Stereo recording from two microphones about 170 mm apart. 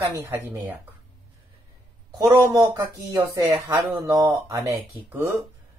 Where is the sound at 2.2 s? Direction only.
20° right (ahead or behind).